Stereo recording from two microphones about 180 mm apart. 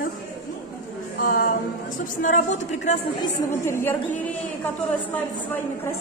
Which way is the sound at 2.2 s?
45° left (ahead or behind).